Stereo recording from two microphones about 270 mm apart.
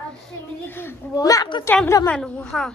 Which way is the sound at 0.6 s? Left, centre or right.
Centre.